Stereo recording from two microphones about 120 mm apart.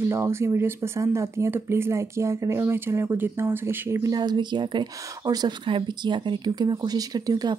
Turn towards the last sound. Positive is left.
turn(degrees=-30)  # may be behind; listen again after turning